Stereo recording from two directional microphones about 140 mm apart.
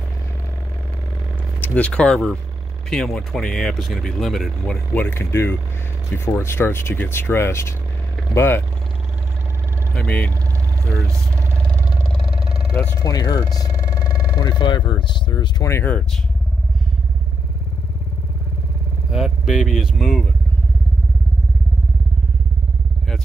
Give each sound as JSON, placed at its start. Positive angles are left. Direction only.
{"t": 1.6, "sound": "speech", "side_deg": 10}
{"t": 4.9, "sound": "speech", "side_deg": 15}
{"t": 9.9, "sound": "speech", "side_deg": 10}
{"t": 12.7, "sound": "speech", "side_deg": 15}
{"t": 13.0, "sound": "speech", "side_deg": 30}
{"t": 15.6, "sound": "speech", "side_deg": 15}
{"t": 19.0, "sound": "speech", "side_deg": -5}